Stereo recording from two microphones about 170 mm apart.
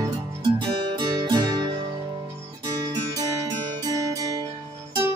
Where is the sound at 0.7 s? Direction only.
35° right (ahead or behind).